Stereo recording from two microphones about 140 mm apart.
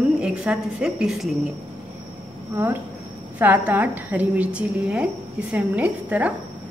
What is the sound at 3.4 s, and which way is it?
A woman's voice, 10° right (ahead or behind).